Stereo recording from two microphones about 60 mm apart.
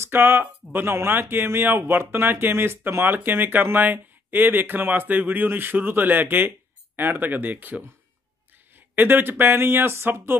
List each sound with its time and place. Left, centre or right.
0.0 s speech: right
8.9 s speech: right